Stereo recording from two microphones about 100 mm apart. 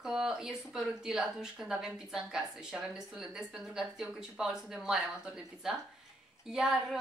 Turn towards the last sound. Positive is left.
turn(degrees=-5)  # may be behind; listen again after turning